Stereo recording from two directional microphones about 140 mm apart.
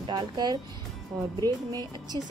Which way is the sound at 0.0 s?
30° right (ahead or behind).